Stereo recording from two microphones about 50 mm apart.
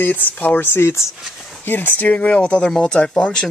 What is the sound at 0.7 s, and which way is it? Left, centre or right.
Speech, left.